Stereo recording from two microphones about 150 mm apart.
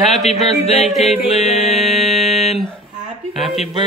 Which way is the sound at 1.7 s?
Centre (ahead or behind).